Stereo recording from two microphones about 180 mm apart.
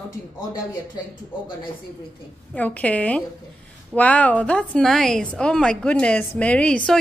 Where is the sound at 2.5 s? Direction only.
10° left (ahead or behind).